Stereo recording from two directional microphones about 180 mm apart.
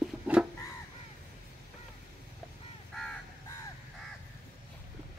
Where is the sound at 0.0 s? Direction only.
5° right (ahead or behind).